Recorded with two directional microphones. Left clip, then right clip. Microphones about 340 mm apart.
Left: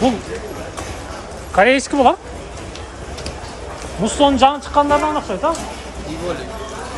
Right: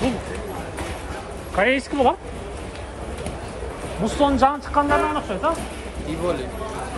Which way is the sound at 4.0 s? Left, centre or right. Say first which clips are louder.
Left 5 dB; centre.